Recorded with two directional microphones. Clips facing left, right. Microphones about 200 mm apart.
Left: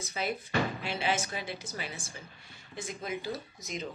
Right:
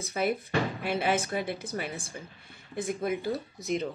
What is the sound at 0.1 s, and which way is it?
Speech, 55° right (ahead or behind).